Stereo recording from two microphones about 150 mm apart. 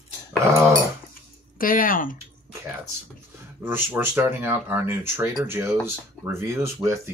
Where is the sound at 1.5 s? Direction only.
70° left (ahead or behind).